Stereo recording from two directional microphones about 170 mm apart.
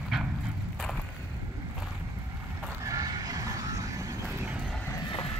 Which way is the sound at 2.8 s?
20° right (ahead or behind).